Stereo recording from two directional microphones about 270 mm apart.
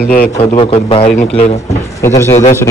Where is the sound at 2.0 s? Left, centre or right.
Centre.